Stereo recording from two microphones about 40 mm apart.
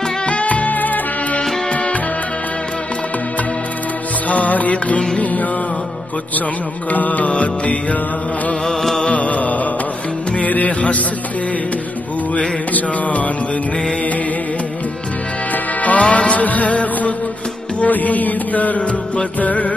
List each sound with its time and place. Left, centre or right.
0.3 s music: left
1.7 s music: left
4.3 s music: left
6.9 s music: left
8.6 s music: centre
9.0 s music: left
12.7 s music: left
15.5 s music: left